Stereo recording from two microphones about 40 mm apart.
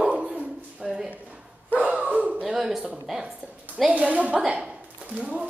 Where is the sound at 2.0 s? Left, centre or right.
Right.